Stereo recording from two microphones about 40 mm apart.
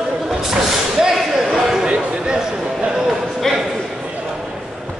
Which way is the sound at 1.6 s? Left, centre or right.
Centre.